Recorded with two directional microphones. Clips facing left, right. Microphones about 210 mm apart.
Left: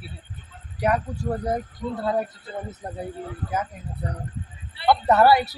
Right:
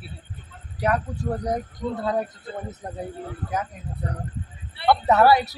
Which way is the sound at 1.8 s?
35° right (ahead or behind).